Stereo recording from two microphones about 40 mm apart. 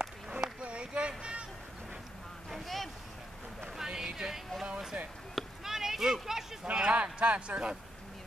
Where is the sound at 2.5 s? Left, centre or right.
Centre.